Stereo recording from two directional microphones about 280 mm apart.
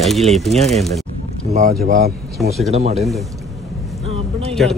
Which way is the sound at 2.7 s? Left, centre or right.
Right.